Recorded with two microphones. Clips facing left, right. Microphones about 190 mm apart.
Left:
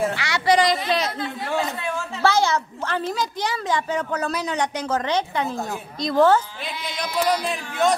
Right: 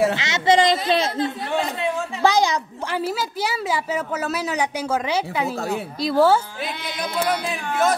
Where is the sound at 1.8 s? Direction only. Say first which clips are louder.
Right 3 dB; 15° right (ahead or behind).